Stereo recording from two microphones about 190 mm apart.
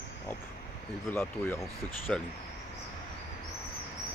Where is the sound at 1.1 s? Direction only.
10° left (ahead or behind).